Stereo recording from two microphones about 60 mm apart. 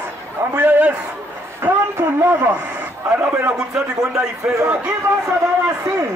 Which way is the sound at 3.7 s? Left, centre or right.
Centre.